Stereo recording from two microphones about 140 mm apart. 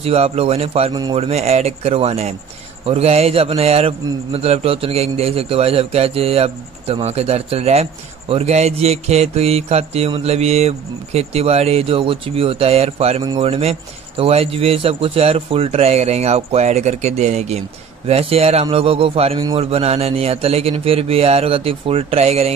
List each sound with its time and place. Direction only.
0.0 s a man's voice: 45° right (ahead or behind)